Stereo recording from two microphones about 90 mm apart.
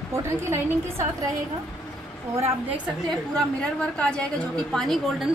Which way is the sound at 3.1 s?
10° left (ahead or behind).